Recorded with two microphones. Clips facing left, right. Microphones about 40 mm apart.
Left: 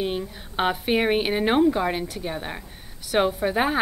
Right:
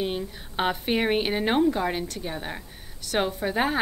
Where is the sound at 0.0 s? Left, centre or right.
Centre.